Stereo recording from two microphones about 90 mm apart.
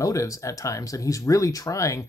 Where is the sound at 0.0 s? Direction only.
35° left (ahead or behind).